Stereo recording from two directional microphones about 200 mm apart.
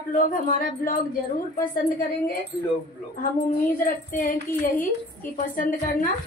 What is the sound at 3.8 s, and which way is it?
A woman's voice, 40° left (ahead or behind).